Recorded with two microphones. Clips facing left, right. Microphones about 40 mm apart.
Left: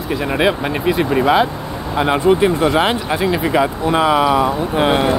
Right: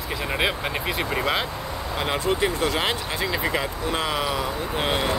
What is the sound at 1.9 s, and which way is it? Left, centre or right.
Speech, left.